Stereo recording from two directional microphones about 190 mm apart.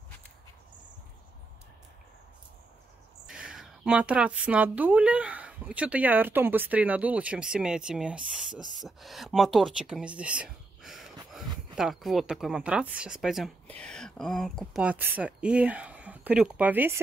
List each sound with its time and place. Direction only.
3.3 s speech: 5° right (ahead or behind)
8.5 s speech: 45° right (ahead or behind)
8.8 s speech: centre (ahead or behind)